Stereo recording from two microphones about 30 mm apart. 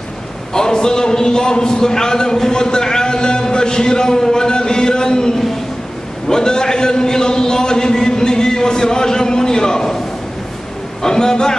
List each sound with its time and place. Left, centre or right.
0.5 s a man's voice: left
11.0 s a man's voice: left